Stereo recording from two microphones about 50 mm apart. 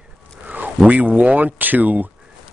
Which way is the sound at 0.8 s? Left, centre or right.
Right.